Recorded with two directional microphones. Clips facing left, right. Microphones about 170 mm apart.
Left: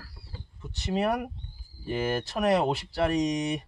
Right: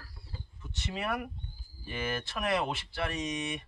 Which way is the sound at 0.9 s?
35° left (ahead or behind).